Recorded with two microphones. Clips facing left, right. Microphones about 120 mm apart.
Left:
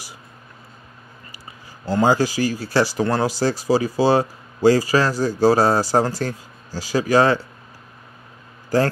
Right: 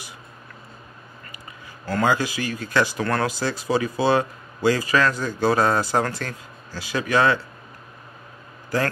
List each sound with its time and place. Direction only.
2.0 s speech: 35° left (ahead or behind)